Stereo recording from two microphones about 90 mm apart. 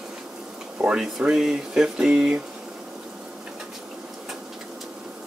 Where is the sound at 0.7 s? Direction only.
10° right (ahead or behind).